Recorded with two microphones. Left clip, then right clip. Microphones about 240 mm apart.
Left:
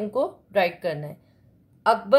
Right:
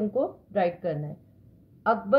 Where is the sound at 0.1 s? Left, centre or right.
Left.